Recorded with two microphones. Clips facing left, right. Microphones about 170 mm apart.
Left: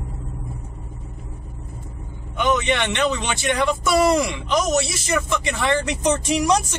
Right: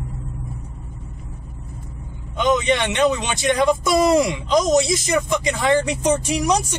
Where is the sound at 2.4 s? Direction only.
15° right (ahead or behind).